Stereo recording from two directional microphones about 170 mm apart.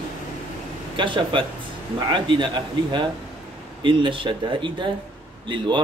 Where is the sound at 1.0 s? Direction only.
30° right (ahead or behind).